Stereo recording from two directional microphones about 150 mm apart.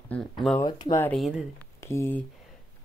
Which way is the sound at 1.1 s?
Centre (ahead or behind).